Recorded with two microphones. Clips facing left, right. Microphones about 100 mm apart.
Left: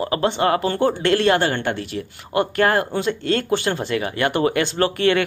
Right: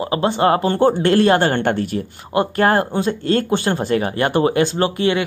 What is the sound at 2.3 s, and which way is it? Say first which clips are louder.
Speech: right 2 dB; 35° right (ahead or behind).